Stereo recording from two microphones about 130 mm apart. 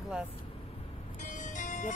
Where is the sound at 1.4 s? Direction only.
75° left (ahead or behind).